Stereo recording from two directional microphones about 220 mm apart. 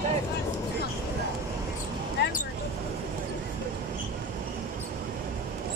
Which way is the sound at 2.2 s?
50° left (ahead or behind).